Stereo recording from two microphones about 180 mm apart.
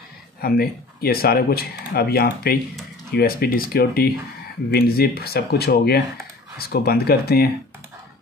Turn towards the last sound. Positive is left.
turn(degrees=60)  # may be behind; listen again after turning